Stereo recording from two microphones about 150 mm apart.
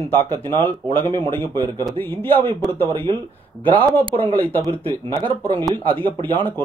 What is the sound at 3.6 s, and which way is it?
Speech, 10° left (ahead or behind).